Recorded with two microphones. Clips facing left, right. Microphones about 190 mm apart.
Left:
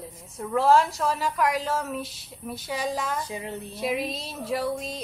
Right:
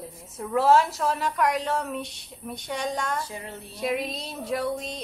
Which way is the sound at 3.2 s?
20° left (ahead or behind).